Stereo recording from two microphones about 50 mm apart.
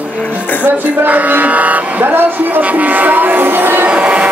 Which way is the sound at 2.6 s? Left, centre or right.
Right.